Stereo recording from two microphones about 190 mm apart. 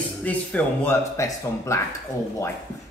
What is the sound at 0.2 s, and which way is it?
A man's voice, 10° left (ahead or behind).